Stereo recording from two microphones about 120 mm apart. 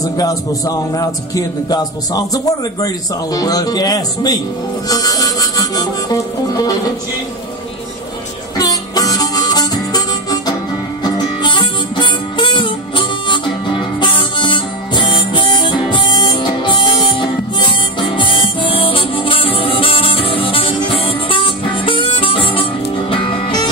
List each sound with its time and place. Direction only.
0.0 s a man's voice: 30° left (ahead or behind)
4.8 s harmonica: 30° left (ahead or behind)
8.5 s harmonica: 30° left (ahead or behind)
11.1 s music: 35° left (ahead or behind)